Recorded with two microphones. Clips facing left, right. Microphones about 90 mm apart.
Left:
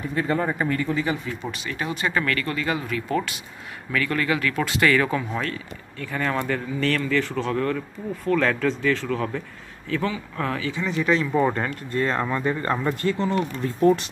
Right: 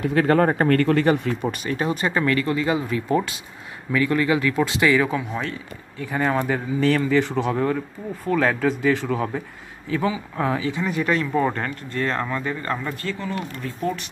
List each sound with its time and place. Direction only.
0.0 s speech: 80° right
0.5 s speech: 60° right (ahead or behind)
1.7 s speech: 35° right (ahead or behind)
4.9 s speech: 5° right (ahead or behind); by 12.7 s 20° left (ahead or behind)
13.2 s speech: 30° left (ahead or behind)